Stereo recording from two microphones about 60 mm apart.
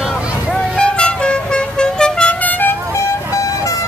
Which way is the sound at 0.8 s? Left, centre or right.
Centre.